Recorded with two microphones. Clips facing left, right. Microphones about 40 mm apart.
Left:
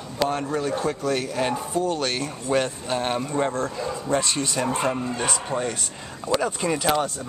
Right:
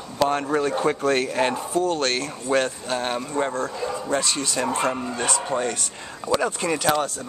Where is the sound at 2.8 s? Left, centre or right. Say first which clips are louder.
Left 1 dB; centre.